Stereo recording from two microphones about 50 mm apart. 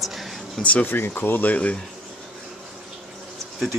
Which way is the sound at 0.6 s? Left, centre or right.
Left.